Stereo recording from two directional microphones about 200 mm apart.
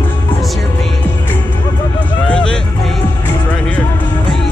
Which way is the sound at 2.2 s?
5° left (ahead or behind).